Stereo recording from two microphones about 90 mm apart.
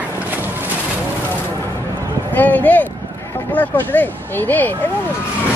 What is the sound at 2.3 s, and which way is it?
Speech, 20° left (ahead or behind).